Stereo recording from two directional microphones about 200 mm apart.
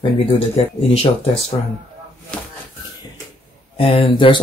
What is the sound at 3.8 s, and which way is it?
Speech, 25° left (ahead or behind).